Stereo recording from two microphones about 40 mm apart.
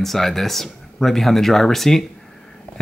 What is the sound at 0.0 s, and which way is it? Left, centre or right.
Speech, centre.